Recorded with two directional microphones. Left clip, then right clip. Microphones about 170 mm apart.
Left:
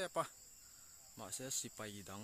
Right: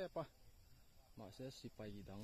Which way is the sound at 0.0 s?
10° left (ahead or behind).